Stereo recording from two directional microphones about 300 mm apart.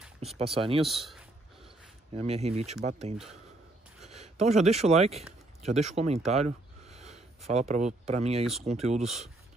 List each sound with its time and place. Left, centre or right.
0.2 s speech: centre
0.8 s speech: centre
2.1 s speech: right
4.1 s speech: right